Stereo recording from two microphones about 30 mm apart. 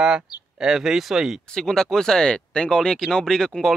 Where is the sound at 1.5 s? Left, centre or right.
Centre.